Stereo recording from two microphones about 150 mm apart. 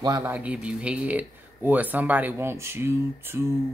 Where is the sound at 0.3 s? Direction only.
10° right (ahead or behind).